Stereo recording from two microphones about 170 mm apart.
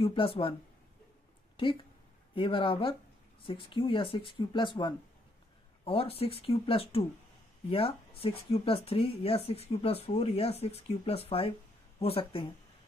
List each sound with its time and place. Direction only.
0.0 s speech: 35° left (ahead or behind)
2.3 s speech: 30° left (ahead or behind)
8.2 s speech: 35° left (ahead or behind)